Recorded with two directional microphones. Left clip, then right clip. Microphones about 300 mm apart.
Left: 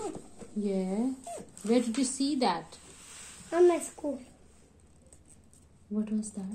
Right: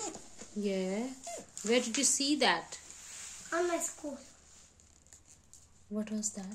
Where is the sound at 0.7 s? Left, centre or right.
Right.